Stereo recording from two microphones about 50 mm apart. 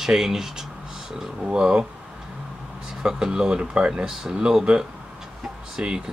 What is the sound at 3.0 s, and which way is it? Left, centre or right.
Speech, centre.